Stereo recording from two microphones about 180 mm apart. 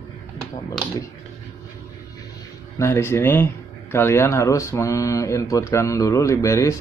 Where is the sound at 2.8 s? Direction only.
15° left (ahead or behind).